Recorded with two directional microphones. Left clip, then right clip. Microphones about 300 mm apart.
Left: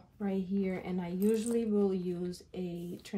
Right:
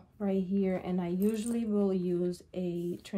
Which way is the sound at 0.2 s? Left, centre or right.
Centre.